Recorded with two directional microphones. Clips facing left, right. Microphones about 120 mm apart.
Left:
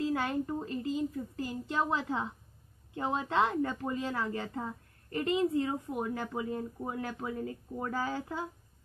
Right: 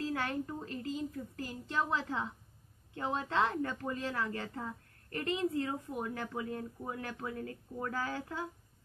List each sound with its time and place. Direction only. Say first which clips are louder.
0.0 s a woman's voice: left 4 dB; 15° left (ahead or behind)